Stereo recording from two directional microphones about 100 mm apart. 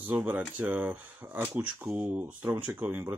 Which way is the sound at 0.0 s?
15° right (ahead or behind).